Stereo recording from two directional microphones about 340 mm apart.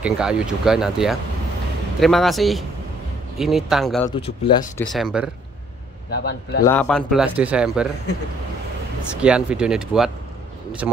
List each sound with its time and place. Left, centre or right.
0.0 s speech: centre
6.0 s a man's voice: left
6.6 s speech: centre
9.1 s speech: centre